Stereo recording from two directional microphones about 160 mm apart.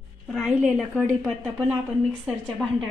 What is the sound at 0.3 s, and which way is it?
Speech, 5° right (ahead or behind).